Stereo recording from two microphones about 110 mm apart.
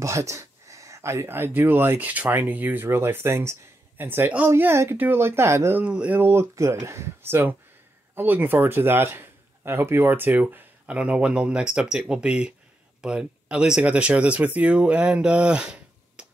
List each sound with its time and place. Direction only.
0.0 s speech: 25° right (ahead or behind)
5.9 s speech: 10° right (ahead or behind)